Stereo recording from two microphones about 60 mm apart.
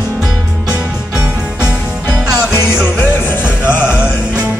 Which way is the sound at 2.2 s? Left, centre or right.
Centre.